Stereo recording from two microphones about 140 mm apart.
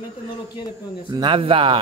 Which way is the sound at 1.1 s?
35° right (ahead or behind).